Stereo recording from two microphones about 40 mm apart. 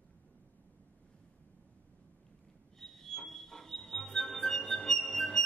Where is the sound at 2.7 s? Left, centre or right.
Centre.